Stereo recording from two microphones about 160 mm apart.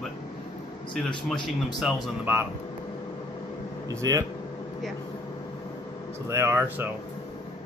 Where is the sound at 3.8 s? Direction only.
25° right (ahead or behind).